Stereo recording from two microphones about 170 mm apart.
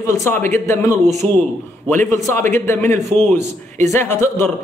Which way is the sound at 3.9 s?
15° left (ahead or behind).